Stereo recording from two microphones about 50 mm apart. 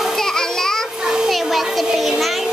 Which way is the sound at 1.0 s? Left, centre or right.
Centre.